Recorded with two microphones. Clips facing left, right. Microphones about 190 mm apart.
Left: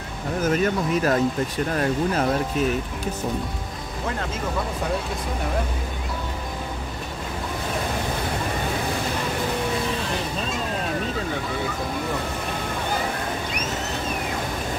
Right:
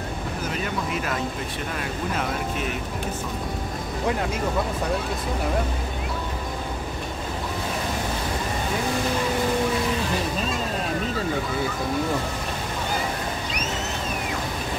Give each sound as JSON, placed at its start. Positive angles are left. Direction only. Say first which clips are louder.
{"t": 0.4, "sound": "speech", "louder": "left 9 dB", "side_deg": 45}